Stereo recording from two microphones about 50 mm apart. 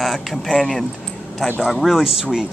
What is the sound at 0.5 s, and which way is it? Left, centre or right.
Speech, centre.